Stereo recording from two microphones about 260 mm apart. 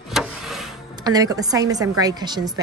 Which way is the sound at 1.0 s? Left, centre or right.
Centre.